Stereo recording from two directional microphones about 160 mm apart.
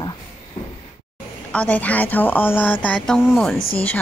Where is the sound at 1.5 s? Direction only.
10° left (ahead or behind).